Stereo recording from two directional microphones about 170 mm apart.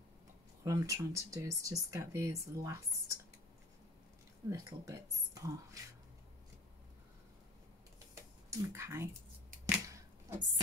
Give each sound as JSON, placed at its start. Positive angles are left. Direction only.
{"t": 0.7, "sound": "speech", "side_deg": -20}
{"t": 4.5, "sound": "speech", "side_deg": -20}
{"t": 8.1, "sound": "a sound", "side_deg": -15}